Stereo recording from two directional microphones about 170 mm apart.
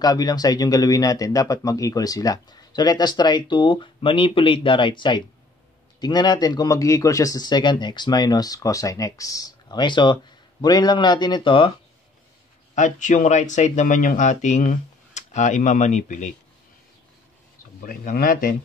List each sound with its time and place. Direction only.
0.0 s speech: 20° left (ahead or behind)
12.7 s speech: 45° left (ahead or behind)
17.8 s speech: 60° left (ahead or behind)